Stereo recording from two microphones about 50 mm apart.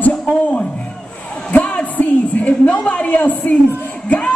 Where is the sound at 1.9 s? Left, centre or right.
Left.